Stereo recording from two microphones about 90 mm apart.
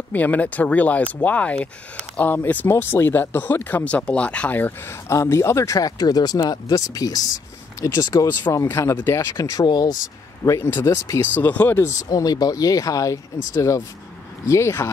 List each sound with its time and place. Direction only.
0.1 s speech: 15° left (ahead or behind)
5.0 s speech: 30° left (ahead or behind); by 8.5 s 50° left (ahead or behind)
8.6 s speech: 25° left (ahead or behind); by 9.9 s 45° left (ahead or behind)
10.4 s speech: 30° left (ahead or behind)
11.8 s speech: 35° left (ahead or behind)